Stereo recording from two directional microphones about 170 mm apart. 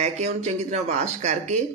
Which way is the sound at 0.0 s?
40° right (ahead or behind).